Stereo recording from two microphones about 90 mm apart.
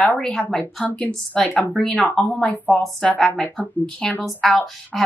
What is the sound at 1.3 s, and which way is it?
A woman's voice, 5° left (ahead or behind).